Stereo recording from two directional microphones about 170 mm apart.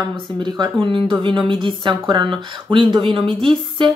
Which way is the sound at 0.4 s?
30° right (ahead or behind).